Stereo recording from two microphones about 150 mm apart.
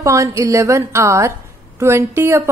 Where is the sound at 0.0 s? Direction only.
20° right (ahead or behind).